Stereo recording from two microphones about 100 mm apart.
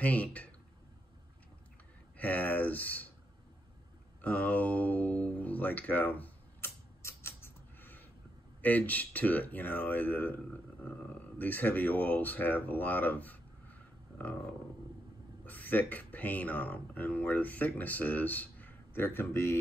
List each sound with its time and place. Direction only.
0.0 s speech: 15° left (ahead or behind)
2.1 s speech: 15° left (ahead or behind)
4.2 s a sound: 15° left (ahead or behind)
8.6 s speech: 15° left (ahead or behind)
14.1 s dog: 20° left (ahead or behind)
15.4 s speech: 15° left (ahead or behind)